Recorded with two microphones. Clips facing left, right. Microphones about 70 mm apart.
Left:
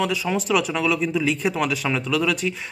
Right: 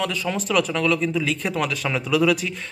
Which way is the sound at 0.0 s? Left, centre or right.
Centre.